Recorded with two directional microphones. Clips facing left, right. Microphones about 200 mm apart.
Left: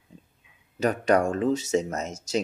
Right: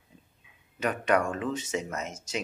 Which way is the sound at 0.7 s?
35° left (ahead or behind).